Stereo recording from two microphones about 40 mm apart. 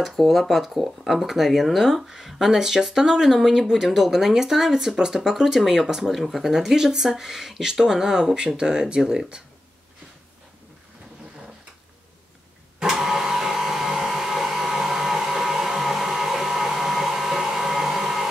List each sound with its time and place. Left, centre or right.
0.0 s speech: centre
12.7 s vehicle: centre
13.0 s a sound: centre